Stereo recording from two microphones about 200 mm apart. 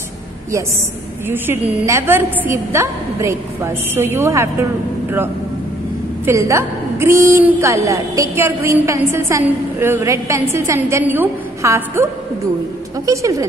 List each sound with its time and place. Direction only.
1.3 s a woman's voice: 10° right (ahead or behind)
6.2 s a woman's voice: 15° right (ahead or behind)